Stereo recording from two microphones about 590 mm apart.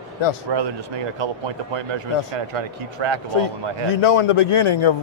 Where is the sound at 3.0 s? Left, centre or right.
Right.